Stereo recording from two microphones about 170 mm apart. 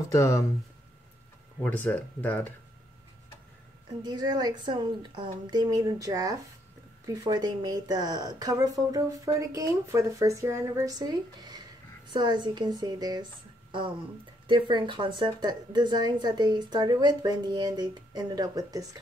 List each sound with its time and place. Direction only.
0.1 s speech: 20° left (ahead or behind)
1.6 s speech: 10° left (ahead or behind)
4.0 s a woman's voice: 25° right (ahead or behind)